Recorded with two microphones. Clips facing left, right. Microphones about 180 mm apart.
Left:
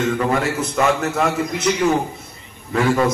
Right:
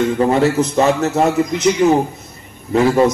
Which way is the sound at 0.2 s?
30° right (ahead or behind).